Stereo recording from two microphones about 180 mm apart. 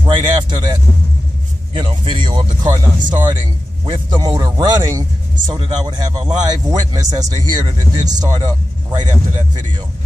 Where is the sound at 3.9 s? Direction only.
20° right (ahead or behind).